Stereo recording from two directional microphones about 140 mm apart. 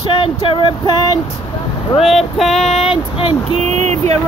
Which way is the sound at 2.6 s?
50° left (ahead or behind).